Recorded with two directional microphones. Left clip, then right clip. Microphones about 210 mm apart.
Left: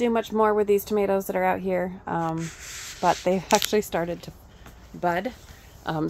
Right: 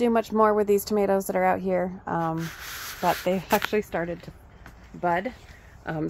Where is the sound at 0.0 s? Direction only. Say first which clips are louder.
Right 1 dB; 10° right (ahead or behind).